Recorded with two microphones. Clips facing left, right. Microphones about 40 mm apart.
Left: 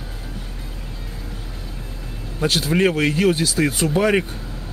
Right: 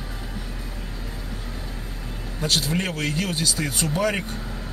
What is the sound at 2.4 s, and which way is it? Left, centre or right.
Speech, left.